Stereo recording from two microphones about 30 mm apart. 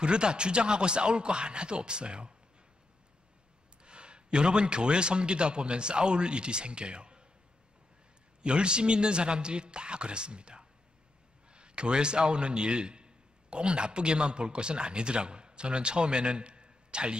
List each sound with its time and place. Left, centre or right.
0.0 s speech: right
3.8 s a man's voice: right
8.4 s a man's voice: right